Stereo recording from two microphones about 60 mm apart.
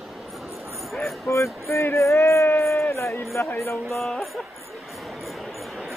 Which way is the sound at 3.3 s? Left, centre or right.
Left.